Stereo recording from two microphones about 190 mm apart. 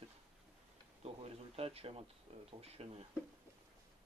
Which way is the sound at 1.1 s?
30° right (ahead or behind).